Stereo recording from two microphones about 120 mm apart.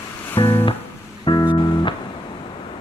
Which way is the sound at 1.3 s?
40° left (ahead or behind).